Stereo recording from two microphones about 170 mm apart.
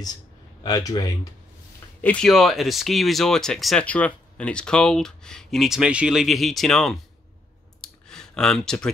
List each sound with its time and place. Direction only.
0.7 s speech: 20° left (ahead or behind)
2.0 s speech: 5° left (ahead or behind)
7.8 s clicking: 5° left (ahead or behind)